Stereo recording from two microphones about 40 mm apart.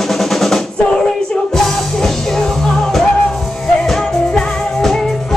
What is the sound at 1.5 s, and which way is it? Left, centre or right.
Music, centre.